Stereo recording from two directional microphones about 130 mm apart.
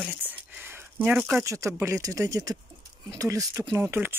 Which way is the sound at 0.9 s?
10° right (ahead or behind).